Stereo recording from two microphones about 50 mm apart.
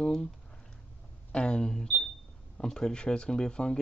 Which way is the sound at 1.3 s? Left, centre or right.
Centre.